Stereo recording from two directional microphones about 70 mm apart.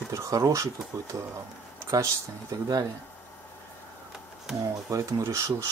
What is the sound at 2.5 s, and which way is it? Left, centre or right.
Speech, right.